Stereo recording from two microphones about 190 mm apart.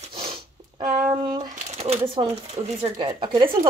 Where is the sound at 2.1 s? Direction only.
30° right (ahead or behind).